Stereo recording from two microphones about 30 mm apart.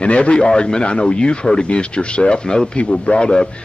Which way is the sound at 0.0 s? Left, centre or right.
Left.